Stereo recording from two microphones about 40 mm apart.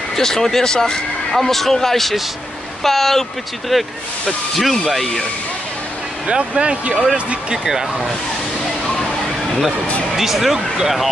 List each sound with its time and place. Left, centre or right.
0.1 s speech: centre
3.7 s speech: centre
6.2 s speech: right
7.5 s speech: centre
8.8 s slosh: centre
10.1 s speech: centre